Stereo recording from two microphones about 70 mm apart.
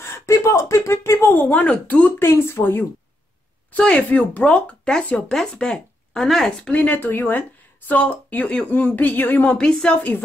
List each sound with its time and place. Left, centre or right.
0.0 s speech: left
1.3 s speech: left
2.2 s speech: left
2.6 s speech: left; by 6.7 s centre
6.7 s speech: left
9.6 s speech: centre